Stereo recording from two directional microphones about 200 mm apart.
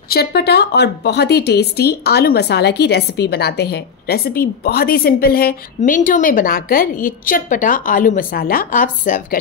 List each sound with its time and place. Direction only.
0.1 s a woman's voice: 55° left (ahead or behind)